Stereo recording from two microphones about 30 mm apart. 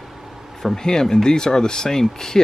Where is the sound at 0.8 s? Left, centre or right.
Left.